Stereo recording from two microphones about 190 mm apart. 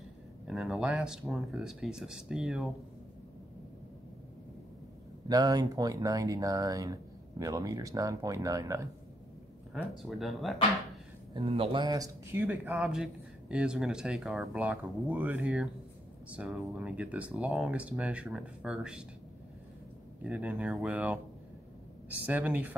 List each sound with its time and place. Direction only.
0.5 s speech: centre (ahead or behind)
5.3 s speech: 20° right (ahead or behind)
9.8 s speech: centre (ahead or behind)
11.4 s speech: 30° right (ahead or behind); by 19.0 s 5° right (ahead or behind)
20.2 s speech: 5° right (ahead or behind)